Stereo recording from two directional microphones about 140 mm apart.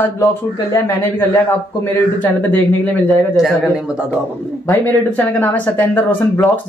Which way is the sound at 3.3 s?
Centre (ahead or behind).